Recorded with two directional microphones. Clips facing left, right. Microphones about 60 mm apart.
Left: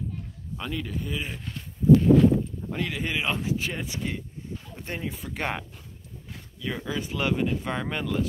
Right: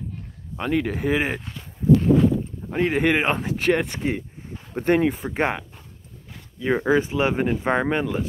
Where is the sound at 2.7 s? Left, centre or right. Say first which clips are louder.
Right 11 dB; right.